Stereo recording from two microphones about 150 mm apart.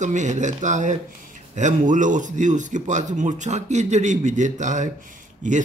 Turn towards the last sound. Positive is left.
turn(degrees=-55)  # may be behind; listen again after turning